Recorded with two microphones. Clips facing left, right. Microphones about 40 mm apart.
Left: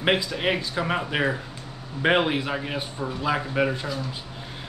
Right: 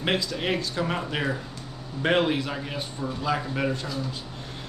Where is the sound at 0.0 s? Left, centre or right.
Left.